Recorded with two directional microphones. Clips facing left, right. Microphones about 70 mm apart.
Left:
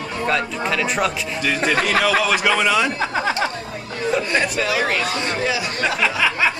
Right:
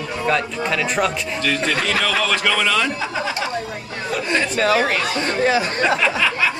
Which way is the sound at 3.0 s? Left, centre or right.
Left.